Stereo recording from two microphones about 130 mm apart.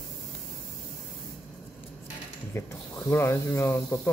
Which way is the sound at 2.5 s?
20° left (ahead or behind).